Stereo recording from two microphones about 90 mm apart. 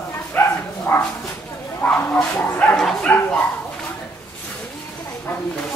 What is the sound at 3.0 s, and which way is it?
Dog, 20° left (ahead or behind).